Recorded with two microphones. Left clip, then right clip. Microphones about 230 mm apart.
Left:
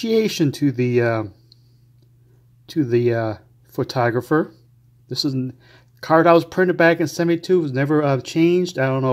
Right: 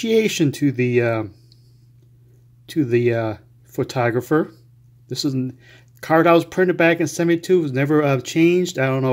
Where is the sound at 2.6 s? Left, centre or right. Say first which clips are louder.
Even; centre.